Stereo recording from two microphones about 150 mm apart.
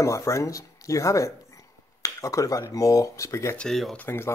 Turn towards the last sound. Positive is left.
turn(degrees=15)  # may be behind; listen again after turning